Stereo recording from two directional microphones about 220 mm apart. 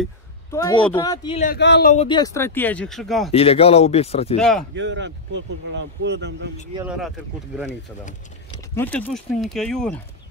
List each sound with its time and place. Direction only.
0.5 s speech: 20° left (ahead or behind)
1.4 s speech: 45° left (ahead or behind)
2.0 s speech: 15° left (ahead or behind); by 3.3 s centre (ahead or behind)
3.3 s speech: 25° left (ahead or behind)
4.4 s speech: centre (ahead or behind)
4.7 s speech: 55° right (ahead or behind)
8.7 s speech: 10° left (ahead or behind)